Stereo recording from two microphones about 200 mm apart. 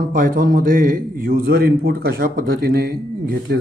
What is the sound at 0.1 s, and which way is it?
A man's voice, 45° right (ahead or behind).